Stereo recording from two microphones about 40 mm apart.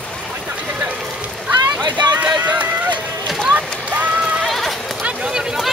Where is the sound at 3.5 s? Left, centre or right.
Right.